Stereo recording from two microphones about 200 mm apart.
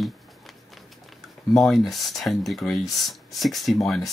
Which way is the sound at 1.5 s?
Centre (ahead or behind).